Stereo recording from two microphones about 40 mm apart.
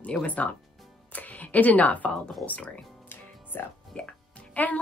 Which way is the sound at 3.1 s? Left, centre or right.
Left.